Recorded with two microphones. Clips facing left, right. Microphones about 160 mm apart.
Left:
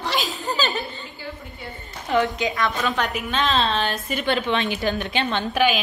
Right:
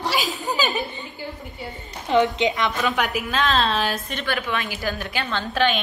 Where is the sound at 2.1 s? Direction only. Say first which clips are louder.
Right 3 dB; 20° right (ahead or behind).